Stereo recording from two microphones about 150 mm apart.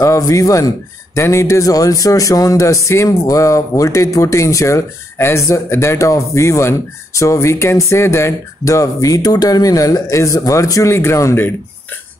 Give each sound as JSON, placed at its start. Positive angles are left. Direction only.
{"t": 0.0, "sound": "a man's voice", "side_deg": 20}